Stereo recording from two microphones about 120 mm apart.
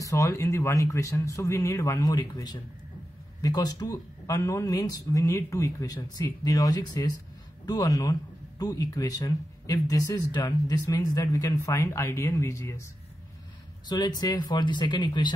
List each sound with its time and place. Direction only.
0.0 s speech: 25° left (ahead or behind)
13.8 s speech: 35° left (ahead or behind)